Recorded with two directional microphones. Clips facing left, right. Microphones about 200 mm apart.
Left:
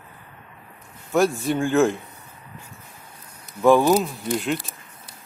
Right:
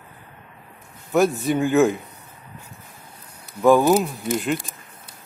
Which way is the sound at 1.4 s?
Centre (ahead or behind).